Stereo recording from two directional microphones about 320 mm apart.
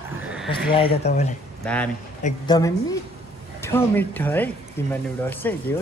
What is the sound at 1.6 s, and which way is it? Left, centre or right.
A woman's voice, centre.